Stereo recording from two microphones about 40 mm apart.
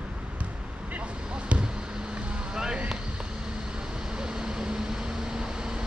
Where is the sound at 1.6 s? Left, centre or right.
Right.